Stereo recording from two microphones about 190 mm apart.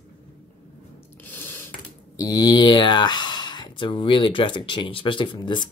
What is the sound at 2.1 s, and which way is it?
Speech, 20° left (ahead or behind).